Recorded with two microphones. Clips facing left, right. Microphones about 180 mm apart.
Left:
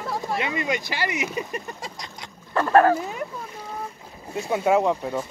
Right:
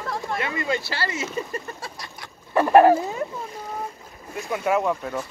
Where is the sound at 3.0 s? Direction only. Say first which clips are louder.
Right 3 dB; 35° right (ahead or behind).